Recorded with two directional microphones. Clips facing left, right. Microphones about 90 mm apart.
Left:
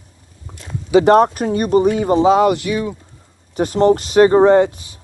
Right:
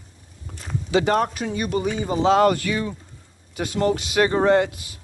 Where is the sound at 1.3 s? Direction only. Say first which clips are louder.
Left 9 dB; 50° left (ahead or behind).